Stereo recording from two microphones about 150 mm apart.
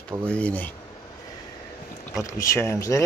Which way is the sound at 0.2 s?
10° left (ahead or behind).